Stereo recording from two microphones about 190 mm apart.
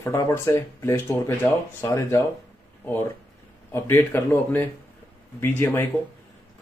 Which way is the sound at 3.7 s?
10° left (ahead or behind).